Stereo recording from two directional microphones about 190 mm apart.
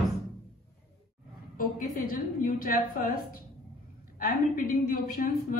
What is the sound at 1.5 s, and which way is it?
A woman's voice, 50° left (ahead or behind).